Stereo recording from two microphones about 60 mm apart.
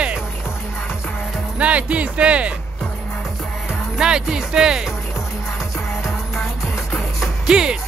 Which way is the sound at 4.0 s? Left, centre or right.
Centre.